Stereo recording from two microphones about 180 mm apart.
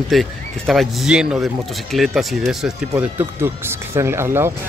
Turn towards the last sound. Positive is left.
turn(degrees=-15)  # may be behind; listen again after turning